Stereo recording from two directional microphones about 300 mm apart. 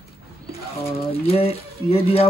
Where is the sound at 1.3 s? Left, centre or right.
Centre.